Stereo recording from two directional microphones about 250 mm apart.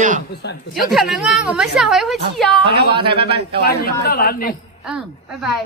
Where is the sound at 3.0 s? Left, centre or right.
Right.